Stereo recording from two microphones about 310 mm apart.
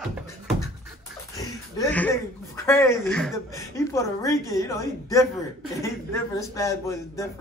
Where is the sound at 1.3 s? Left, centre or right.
Centre.